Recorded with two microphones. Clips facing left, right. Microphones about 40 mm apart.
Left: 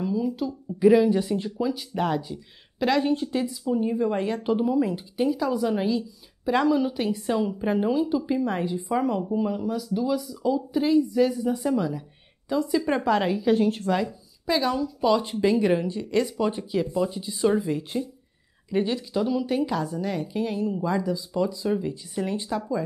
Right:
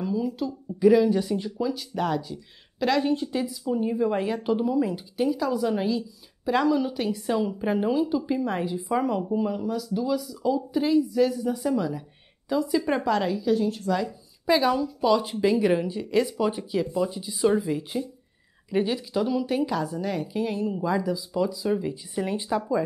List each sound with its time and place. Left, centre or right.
0.0 s a sound: centre
0.7 s speech: centre
13.0 s a woman's voice: centre
13.3 s a woman's voice: left
14.4 s a woman's voice: centre
15.0 s speech: centre